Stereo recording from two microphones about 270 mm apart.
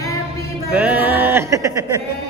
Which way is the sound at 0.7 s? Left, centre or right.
Centre.